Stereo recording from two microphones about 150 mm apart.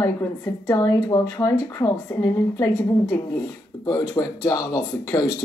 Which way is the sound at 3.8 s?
25° left (ahead or behind).